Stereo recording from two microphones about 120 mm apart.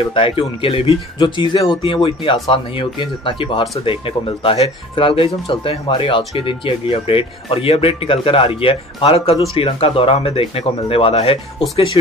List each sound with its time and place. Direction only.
0.1 s speech: 50° left (ahead or behind)